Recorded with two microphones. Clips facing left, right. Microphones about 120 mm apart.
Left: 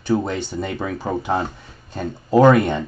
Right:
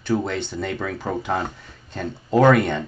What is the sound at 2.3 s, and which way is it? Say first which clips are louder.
Speech: left 3 dB; 15° left (ahead or behind).